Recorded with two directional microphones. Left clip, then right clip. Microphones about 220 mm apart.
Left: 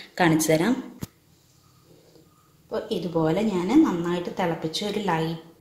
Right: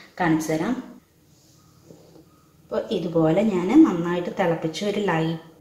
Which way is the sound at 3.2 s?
5° left (ahead or behind).